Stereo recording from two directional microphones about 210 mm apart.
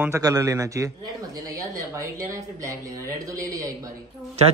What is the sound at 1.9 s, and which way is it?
A man's voice, 15° right (ahead or behind).